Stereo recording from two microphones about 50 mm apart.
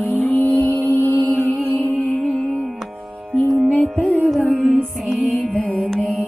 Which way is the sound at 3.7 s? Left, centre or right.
Left.